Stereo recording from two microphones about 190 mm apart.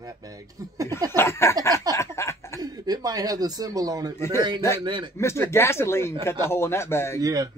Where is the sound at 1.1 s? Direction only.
15° left (ahead or behind).